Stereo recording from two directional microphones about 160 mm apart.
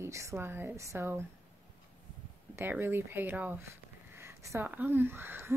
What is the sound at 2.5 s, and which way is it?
Speech, 15° right (ahead or behind).